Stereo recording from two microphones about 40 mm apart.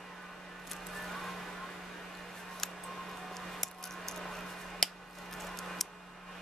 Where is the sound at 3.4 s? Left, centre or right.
Centre.